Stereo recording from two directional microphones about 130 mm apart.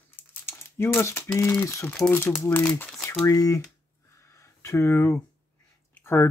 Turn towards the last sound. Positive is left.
turn(degrees=20)  # may be behind; listen again after turning